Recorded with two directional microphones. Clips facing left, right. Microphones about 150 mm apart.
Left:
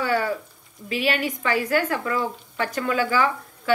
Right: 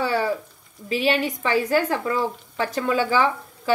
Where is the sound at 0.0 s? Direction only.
30° right (ahead or behind).